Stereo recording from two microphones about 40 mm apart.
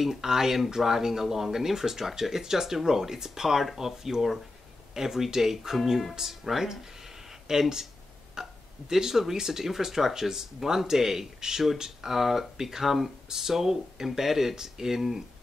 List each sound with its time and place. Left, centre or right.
0.0 s speech: centre